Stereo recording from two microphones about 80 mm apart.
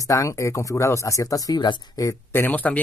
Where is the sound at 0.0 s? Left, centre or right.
Left.